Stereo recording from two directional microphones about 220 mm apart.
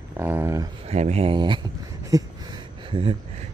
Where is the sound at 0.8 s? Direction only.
30° right (ahead or behind).